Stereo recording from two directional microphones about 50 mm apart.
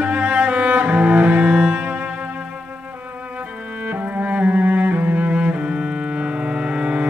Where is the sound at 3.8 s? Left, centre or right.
Right.